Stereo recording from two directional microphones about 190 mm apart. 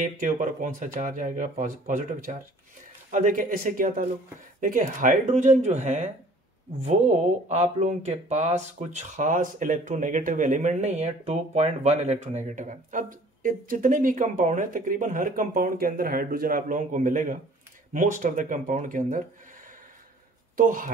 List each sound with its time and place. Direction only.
0.0 s speech: 45° right (ahead or behind)
20.5 s speech: 45° right (ahead or behind)